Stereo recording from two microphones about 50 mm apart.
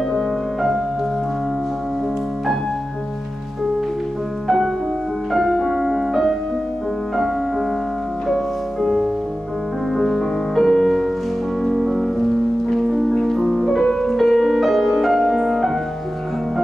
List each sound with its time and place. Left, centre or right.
5.3 s music: centre
8.8 s music: centre